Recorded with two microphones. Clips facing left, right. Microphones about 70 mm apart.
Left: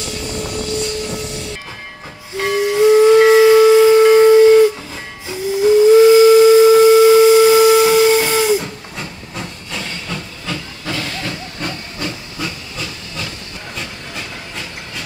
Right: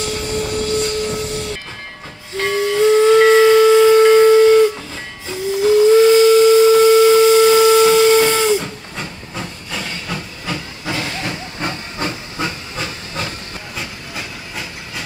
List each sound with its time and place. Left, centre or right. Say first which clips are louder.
0.0 s train: right 3 dB; right
2.3 s steam whistle: left 1 dB; centre
9.0 s hiss: right 1 dB; centre
12.0 s hiss: right 3 dB; right